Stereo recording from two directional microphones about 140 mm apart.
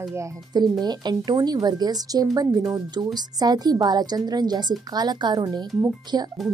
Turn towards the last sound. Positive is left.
turn(degrees=-30)  # may be behind; listen again after turning